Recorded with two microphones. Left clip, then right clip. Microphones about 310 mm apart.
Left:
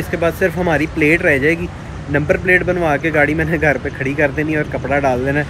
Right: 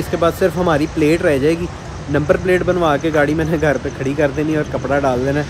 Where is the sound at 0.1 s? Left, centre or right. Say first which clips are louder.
Right 1 dB; centre.